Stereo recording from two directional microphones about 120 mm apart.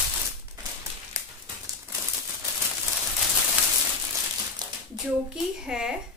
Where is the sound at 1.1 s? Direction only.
25° right (ahead or behind).